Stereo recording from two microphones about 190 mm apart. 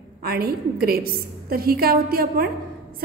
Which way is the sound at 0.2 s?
55° right (ahead or behind).